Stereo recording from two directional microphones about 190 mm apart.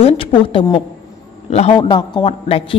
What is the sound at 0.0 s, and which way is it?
A man's voice, 30° left (ahead or behind).